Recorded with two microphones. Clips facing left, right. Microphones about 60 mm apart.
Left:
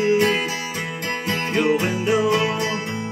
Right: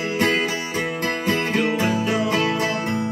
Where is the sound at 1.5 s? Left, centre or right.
Centre.